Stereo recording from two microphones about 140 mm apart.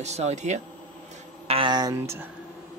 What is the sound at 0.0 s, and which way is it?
Speech, 50° right (ahead or behind).